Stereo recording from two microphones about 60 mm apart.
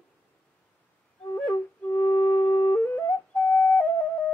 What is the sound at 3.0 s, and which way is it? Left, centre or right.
Whistle, centre.